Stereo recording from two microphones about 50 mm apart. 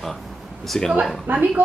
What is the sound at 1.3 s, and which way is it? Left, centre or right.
Speech, right.